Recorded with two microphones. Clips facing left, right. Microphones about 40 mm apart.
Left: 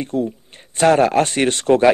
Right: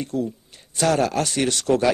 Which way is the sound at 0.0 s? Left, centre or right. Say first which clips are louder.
Left 4 dB; left.